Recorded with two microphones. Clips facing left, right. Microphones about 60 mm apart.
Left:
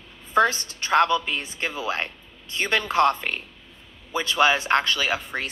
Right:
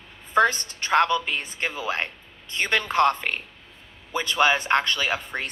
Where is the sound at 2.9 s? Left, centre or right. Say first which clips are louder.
Left 1 dB; right.